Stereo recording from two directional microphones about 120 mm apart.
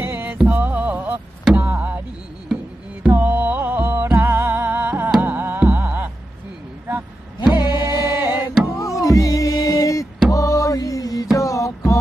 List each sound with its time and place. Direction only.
0.0 s music: 15° right (ahead or behind)
1.4 s a sound: 10° right (ahead or behind)
2.5 s music: 15° right (ahead or behind)
7.5 s music: 35° left (ahead or behind)